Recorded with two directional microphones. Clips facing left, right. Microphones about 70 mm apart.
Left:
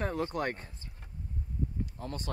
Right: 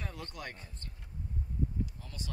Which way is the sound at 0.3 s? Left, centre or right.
Left.